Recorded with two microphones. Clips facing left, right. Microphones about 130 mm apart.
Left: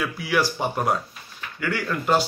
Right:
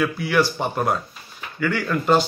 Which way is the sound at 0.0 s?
5° left (ahead or behind).